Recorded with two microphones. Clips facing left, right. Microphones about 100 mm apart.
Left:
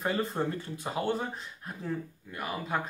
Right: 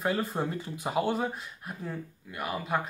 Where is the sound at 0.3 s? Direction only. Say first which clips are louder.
Even; 15° right (ahead or behind).